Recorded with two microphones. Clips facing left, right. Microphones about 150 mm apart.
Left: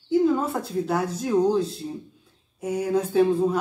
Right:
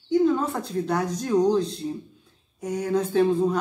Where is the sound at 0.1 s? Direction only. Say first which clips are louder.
Even; 5° left (ahead or behind).